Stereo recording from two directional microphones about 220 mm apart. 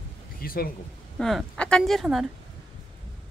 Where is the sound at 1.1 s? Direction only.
Centre (ahead or behind).